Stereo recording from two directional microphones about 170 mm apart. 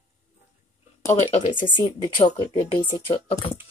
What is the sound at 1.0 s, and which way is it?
Speech, 15° left (ahead or behind).